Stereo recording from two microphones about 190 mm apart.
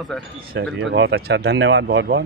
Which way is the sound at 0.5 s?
65° right (ahead or behind).